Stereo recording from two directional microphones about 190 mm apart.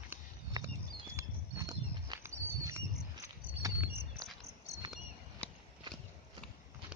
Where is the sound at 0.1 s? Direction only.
20° right (ahead or behind).